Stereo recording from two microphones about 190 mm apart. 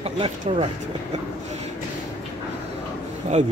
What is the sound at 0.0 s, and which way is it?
Speech, 30° right (ahead or behind).